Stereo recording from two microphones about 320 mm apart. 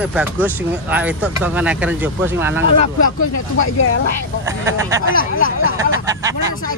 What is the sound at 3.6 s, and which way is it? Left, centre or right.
Speech, left.